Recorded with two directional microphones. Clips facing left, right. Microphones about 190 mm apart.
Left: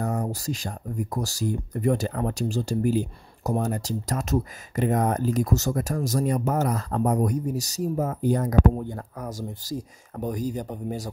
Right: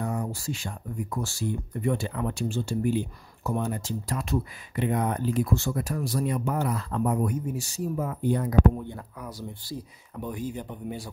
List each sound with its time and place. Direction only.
0.0 s speech: 40° left (ahead or behind)